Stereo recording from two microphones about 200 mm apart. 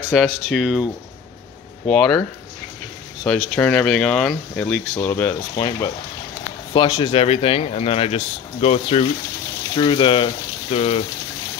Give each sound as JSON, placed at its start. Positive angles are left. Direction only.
{"t": 0.1, "sound": "speech", "side_deg": 0}
{"t": 1.9, "sound": "speech", "side_deg": 5}
{"t": 3.3, "sound": "speech", "side_deg": 5}
{"t": 5.6, "sound": "speech", "side_deg": 20}